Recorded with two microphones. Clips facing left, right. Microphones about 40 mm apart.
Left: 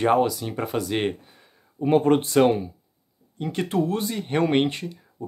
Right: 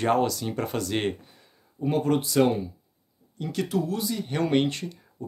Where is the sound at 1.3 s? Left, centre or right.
Left.